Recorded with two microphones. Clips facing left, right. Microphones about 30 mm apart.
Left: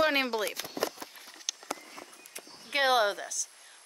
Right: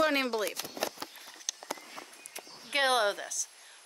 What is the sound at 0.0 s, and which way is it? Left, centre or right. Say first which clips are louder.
Speech: left 1 dB; centre.